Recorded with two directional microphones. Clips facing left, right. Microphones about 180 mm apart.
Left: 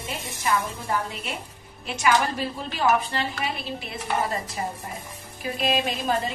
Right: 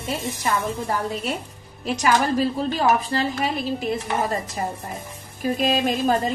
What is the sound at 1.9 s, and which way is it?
A woman's voice, 40° right (ahead or behind).